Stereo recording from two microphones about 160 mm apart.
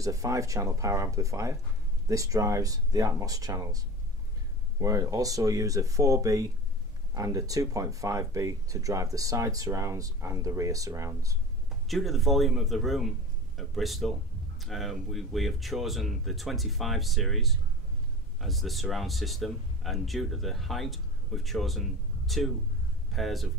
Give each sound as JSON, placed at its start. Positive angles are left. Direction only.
{"t": 0.0, "sound": "speech", "side_deg": -20}
{"t": 11.9, "sound": "speech", "side_deg": 0}